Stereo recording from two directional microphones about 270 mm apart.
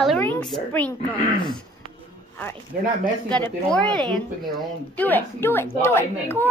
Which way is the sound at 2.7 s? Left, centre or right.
Right.